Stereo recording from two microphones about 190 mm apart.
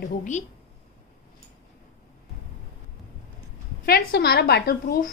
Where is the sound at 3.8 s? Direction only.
55° left (ahead or behind).